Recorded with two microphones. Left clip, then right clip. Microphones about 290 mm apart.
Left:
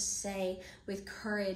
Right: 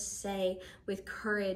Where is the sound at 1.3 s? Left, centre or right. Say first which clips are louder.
Right 3 dB; centre.